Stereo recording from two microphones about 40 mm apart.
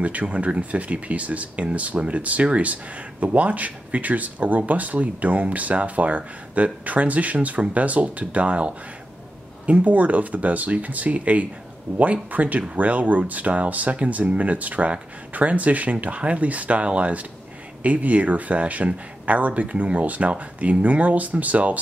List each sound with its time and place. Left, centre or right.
0.0 s speech: right